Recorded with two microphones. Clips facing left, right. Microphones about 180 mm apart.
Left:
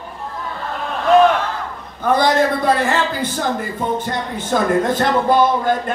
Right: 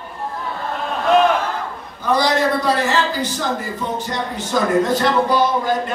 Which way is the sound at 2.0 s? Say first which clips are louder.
Left 2 dB; 50° left (ahead or behind).